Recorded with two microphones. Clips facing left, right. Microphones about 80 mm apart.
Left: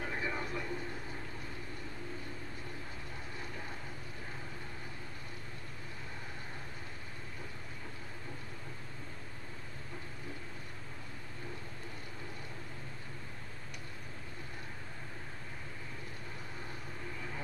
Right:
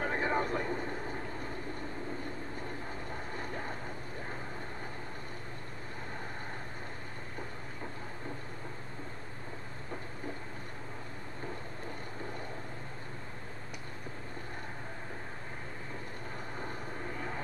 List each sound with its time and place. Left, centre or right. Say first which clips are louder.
0.0 s vehicle: right 7 dB; right
3.3 s vehicle: right 6 dB; right